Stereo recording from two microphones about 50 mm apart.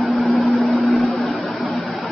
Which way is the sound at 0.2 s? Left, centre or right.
Centre.